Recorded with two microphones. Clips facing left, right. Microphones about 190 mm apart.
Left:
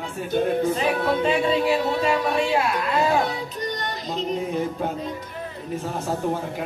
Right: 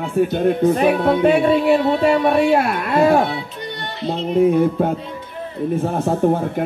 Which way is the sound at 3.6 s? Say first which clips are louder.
Left 1 dB; 40° left (ahead or behind).